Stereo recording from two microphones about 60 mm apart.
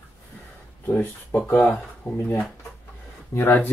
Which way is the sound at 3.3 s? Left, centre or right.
Left.